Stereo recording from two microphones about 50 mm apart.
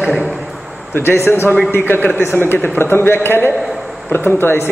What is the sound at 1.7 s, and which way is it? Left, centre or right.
A man's voice, left.